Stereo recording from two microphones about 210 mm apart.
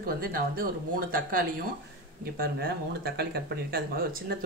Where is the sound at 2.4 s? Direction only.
45° right (ahead or behind).